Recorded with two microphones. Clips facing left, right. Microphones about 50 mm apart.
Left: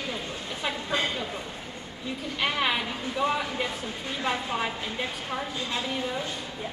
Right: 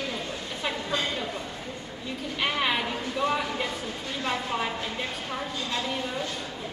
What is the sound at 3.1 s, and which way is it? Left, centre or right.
Speech, centre.